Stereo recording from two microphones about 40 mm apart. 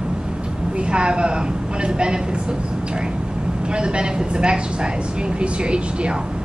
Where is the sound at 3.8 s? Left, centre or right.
Right.